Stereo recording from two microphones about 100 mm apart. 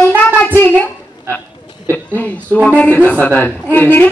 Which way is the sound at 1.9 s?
20° left (ahead or behind).